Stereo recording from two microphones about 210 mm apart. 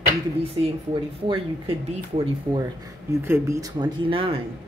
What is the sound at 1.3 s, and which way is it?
Speech, 25° right (ahead or behind).